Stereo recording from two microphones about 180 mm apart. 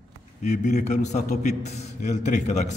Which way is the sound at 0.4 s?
40° left (ahead or behind).